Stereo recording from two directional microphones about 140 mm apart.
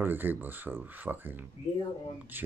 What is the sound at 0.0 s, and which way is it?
Speech, 15° right (ahead or behind).